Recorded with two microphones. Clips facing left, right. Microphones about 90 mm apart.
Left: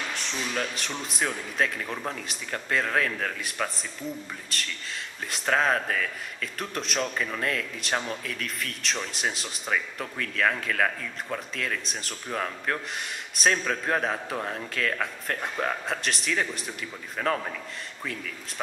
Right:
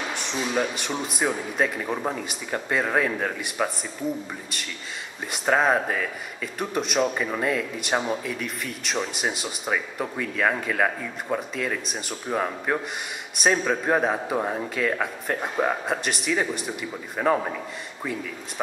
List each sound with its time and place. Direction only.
0.1 s a man's voice: 5° right (ahead or behind)
5.3 s a man's voice: 10° right (ahead or behind)